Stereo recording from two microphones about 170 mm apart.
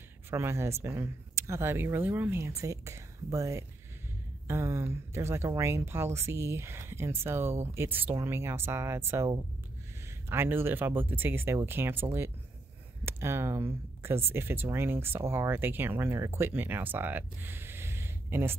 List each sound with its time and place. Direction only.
0.3 s speech: 15° right (ahead or behind)